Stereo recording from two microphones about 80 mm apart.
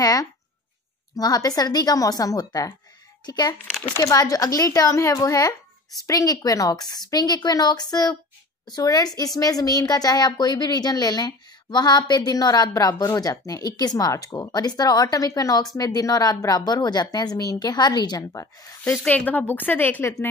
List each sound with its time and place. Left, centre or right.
0.0 s a woman's voice: left
4.0 s a woman's voice: left
18.3 s speech: left
19.0 s a woman's voice: left